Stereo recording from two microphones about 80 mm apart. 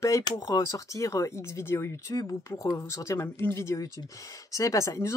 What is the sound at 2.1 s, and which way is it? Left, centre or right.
Speech, left.